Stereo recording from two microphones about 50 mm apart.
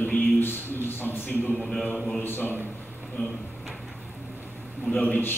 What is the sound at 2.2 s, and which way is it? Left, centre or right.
Speech, left.